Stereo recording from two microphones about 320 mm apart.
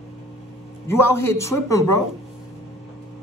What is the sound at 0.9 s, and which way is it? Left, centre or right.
A man's voice, centre.